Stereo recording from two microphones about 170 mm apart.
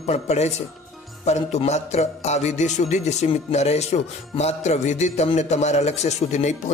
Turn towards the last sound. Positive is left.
turn(degrees=45)  # may be behind; listen again after turning